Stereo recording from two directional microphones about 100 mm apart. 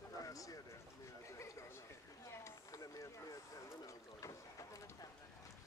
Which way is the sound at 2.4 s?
30° left (ahead or behind).